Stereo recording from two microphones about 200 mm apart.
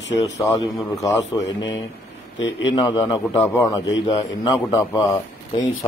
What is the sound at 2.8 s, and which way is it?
A man's voice, 20° left (ahead or behind).